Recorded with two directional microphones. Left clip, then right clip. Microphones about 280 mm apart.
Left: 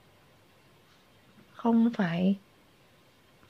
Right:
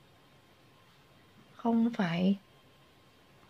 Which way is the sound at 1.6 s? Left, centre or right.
Centre.